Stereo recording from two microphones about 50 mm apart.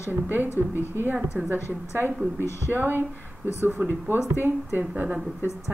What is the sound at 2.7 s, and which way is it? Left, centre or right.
Speech, right.